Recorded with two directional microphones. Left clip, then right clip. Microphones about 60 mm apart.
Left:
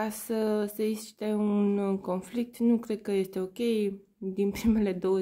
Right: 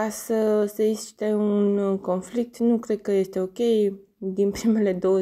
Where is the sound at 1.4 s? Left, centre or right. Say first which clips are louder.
Right 5 dB; centre.